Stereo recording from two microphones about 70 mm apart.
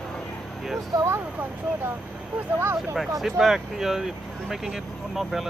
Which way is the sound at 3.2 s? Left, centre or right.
Centre.